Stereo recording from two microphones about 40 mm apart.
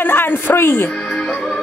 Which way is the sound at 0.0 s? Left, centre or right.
Left.